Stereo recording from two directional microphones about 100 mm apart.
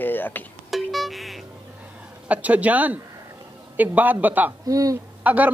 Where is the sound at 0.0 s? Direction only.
20° left (ahead or behind).